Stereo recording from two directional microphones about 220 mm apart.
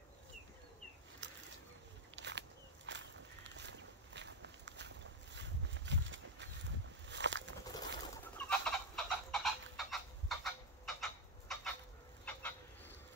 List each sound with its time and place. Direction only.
1.2 s a sound: 55° right (ahead or behind)
2.9 s walk: 55° right (ahead or behind)
7.6 s fowl: 15° left (ahead or behind)
12.3 s cat: 10° left (ahead or behind)